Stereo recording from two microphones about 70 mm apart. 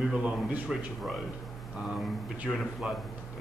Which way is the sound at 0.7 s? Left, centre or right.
Centre.